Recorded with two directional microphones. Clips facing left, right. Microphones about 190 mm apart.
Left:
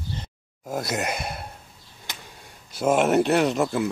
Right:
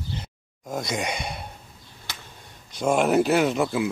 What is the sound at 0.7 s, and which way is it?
Sigh, 5° left (ahead or behind).